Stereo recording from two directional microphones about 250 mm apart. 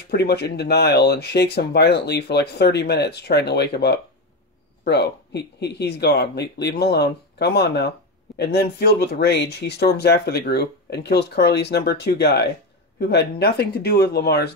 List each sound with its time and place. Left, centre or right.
0.1 s speech: left